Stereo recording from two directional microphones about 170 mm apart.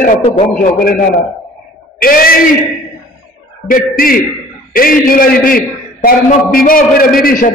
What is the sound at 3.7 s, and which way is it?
A man's voice, 55° left (ahead or behind).